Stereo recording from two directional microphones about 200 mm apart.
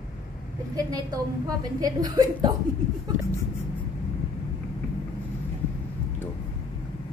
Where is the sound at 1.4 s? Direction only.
20° right (ahead or behind).